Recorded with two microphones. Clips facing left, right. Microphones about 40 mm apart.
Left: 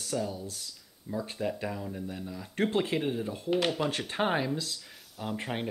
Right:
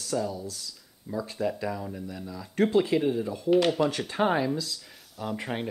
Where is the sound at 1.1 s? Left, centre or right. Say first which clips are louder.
Right 2 dB; right.